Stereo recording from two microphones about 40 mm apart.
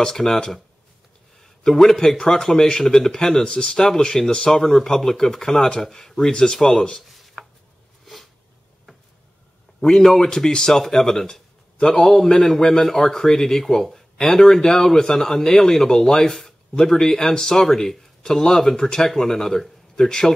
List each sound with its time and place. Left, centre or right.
0.0 s a man's voice: centre
4.5 s speech: centre
7.0 s a sound: centre
9.8 s speech: centre